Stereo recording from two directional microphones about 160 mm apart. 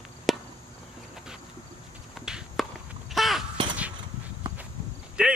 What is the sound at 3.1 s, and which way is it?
Crow, centre (ahead or behind).